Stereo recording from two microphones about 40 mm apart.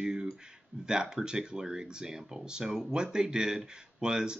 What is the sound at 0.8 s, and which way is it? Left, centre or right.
Speech, centre.